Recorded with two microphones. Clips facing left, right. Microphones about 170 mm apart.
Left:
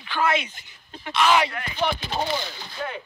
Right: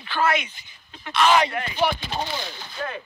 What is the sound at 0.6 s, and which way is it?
Speech, 55° left (ahead or behind).